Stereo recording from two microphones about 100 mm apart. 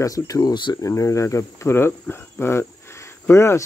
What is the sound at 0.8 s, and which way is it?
Speech, 30° left (ahead or behind).